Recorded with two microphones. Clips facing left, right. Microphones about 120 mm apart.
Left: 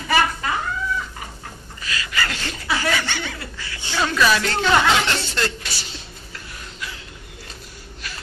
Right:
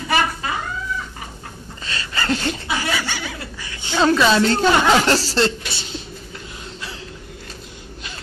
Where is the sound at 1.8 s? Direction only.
30° right (ahead or behind).